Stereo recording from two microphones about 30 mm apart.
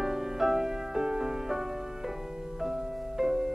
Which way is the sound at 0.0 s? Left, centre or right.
Centre.